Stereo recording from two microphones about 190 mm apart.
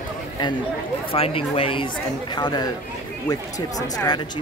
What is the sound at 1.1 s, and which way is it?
Speech, 30° left (ahead or behind).